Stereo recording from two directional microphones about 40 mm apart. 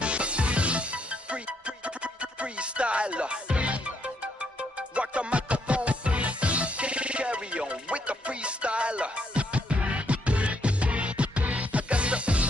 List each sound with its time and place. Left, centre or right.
0.0 s music: right
2.4 s music: right
4.9 s music: right